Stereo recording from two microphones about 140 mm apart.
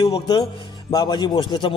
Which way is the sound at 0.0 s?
35° left (ahead or behind).